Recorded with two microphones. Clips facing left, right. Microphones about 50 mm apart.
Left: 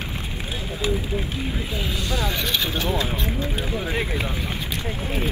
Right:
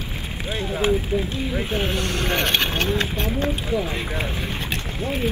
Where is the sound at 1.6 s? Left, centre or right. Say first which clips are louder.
Right 4 dB; right.